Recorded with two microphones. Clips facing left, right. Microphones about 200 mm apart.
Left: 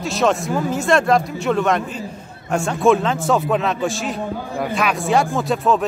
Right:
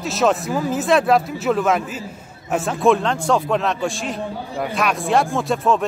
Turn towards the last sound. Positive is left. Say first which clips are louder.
# left 1 dB
turn(degrees=0)  # may be behind; listen again after turning